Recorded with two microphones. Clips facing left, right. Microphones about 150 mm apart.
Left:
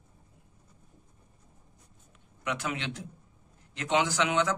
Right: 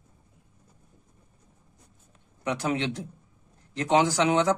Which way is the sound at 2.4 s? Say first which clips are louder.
Right 6 dB; 35° right (ahead or behind).